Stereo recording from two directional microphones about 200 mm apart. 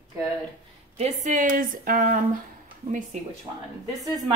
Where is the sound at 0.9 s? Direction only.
35° right (ahead or behind).